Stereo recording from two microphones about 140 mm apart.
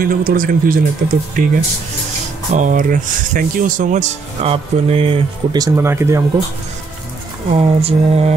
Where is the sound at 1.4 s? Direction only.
75° right (ahead or behind).